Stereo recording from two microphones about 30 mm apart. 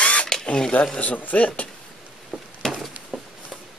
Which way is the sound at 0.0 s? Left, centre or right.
Left.